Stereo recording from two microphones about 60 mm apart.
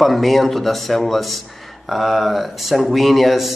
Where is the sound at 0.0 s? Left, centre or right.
Centre.